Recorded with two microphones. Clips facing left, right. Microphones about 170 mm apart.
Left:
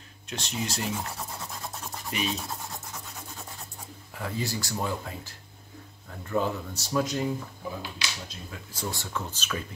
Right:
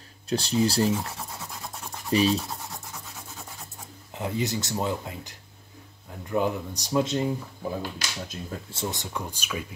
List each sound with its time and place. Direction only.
0.3 s speech: 35° right (ahead or behind)
1.7 s scratch: centre (ahead or behind)
4.1 s speech: 20° right (ahead or behind)
7.8 s speech: 45° right (ahead or behind)
8.7 s speech: 20° right (ahead or behind)